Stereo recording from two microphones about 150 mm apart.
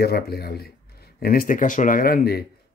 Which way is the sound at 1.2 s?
75° left (ahead or behind).